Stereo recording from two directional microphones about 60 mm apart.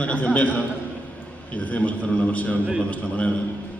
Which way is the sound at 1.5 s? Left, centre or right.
Left.